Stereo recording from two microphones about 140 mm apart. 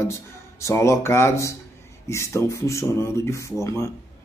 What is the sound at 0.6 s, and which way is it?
A man's voice, 20° left (ahead or behind).